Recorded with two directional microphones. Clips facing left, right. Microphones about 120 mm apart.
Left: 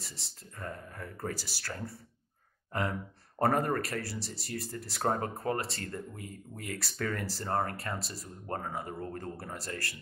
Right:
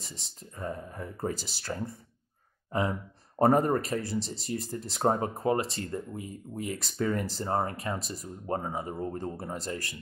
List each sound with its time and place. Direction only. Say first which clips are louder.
0.0 s speech: right 3 dB; 20° right (ahead or behind)